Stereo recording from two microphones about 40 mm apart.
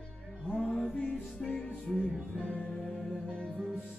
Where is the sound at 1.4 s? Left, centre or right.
Centre.